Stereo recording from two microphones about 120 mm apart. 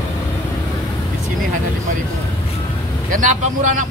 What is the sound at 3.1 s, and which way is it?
Speech, 90° right.